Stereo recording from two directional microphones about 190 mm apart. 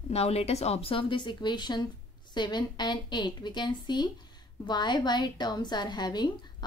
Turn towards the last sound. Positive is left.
turn(degrees=20)  # may be behind; listen again after turning